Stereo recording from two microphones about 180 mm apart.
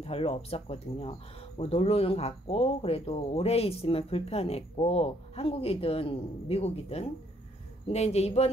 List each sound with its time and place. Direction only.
0.0 s speech: 30° left (ahead or behind)